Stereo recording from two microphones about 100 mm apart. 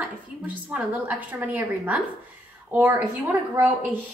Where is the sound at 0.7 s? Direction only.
15° right (ahead or behind).